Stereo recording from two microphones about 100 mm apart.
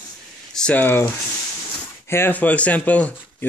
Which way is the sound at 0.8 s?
20° left (ahead or behind).